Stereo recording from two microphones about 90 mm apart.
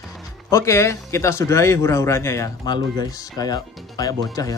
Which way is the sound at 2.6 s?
50° left (ahead or behind).